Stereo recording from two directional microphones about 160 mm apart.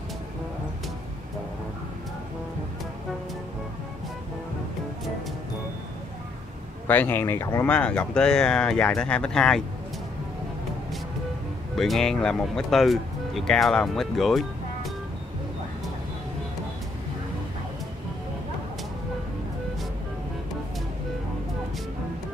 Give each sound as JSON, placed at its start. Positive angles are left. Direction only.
{"t": 6.9, "sound": "speech", "side_deg": 10}
{"t": 11.7, "sound": "speech", "side_deg": 0}